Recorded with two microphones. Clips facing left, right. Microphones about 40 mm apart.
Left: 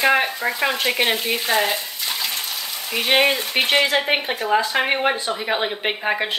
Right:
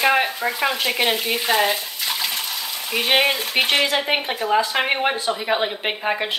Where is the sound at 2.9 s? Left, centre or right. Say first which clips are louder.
Left 1 dB; centre.